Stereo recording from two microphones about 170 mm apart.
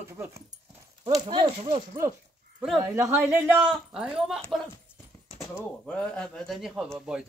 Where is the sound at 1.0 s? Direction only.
25° right (ahead or behind).